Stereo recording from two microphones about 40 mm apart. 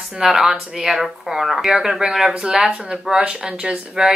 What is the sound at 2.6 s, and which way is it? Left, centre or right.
Speech, right.